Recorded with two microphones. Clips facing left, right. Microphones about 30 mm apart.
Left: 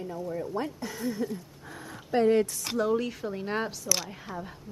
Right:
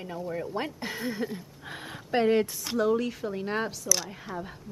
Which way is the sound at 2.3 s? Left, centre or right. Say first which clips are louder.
Even; centre.